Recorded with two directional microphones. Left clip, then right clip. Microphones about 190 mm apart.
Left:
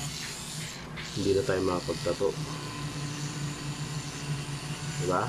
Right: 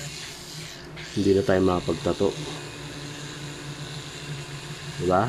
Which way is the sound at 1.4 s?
35° right (ahead or behind).